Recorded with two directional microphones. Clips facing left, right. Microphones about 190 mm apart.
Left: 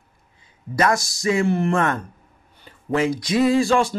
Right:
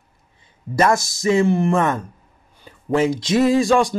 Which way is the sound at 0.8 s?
25° right (ahead or behind).